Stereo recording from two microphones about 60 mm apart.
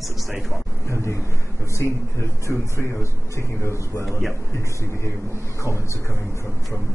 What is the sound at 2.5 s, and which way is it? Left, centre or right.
A man's voice, left.